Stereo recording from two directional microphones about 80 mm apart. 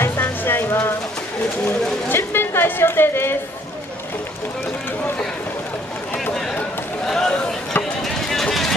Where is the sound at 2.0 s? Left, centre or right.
Left.